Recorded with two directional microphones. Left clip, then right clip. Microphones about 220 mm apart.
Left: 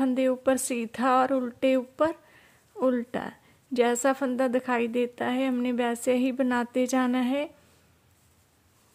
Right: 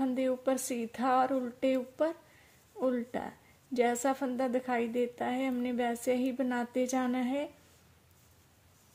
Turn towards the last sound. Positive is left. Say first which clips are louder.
# left 6 dB
turn(degrees=30)  # may be behind; listen again after turning